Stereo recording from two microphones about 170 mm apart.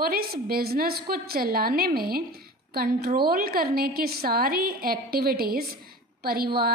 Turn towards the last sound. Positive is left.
turn(degrees=-65)  # may be behind; listen again after turning